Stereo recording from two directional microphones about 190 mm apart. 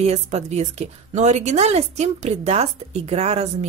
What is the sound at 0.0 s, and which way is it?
Speech, 35° right (ahead or behind).